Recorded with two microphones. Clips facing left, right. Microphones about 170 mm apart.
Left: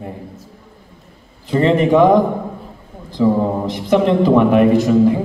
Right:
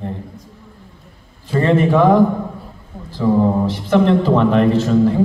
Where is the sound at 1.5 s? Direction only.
20° left (ahead or behind).